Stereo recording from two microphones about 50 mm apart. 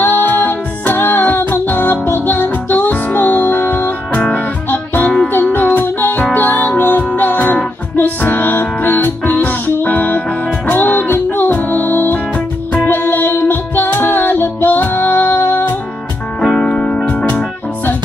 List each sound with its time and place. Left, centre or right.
0.0 s music: left
16.5 s music: left